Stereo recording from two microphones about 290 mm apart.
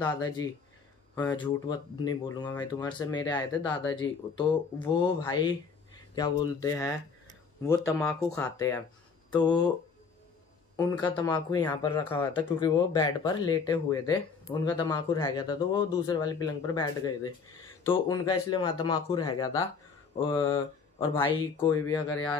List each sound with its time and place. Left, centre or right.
0.0 s speech: centre
10.8 s speech: centre